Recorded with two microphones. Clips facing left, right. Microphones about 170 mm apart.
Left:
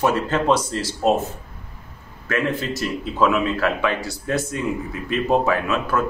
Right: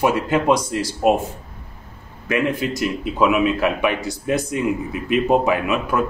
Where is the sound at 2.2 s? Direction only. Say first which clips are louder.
Right 2 dB; 15° right (ahead or behind).